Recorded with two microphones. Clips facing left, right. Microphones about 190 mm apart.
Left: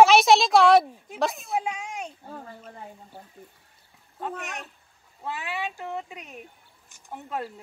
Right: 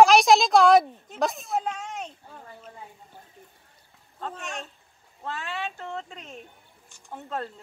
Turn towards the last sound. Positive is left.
turn(degrees=15)  # may be behind; listen again after turning